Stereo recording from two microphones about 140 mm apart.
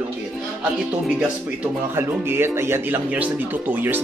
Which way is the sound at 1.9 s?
15° right (ahead or behind).